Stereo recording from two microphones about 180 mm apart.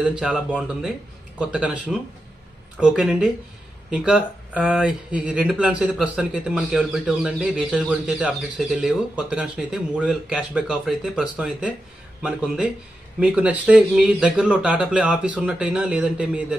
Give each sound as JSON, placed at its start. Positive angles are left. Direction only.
{"t": 0.0, "sound": "speech", "side_deg": -5}
{"t": 1.4, "sound": "speech", "side_deg": -5}